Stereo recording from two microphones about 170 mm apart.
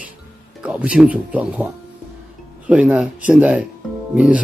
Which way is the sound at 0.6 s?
5° right (ahead or behind).